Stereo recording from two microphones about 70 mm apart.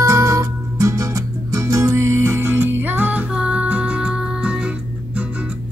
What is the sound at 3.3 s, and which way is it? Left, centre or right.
Music, centre.